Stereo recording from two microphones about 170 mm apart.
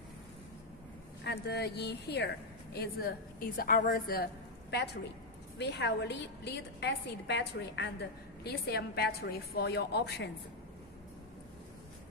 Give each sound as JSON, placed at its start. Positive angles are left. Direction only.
{"t": 1.2, "sound": "a woman's voice", "side_deg": 70}
{"t": 5.6, "sound": "a woman's voice", "side_deg": 90}
{"t": 8.5, "sound": "a woman's voice", "side_deg": 65}